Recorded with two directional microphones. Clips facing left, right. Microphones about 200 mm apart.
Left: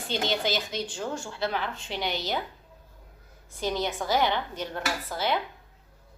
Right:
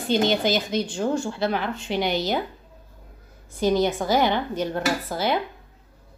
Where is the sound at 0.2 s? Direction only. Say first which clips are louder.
Right 7 dB; 50° right (ahead or behind).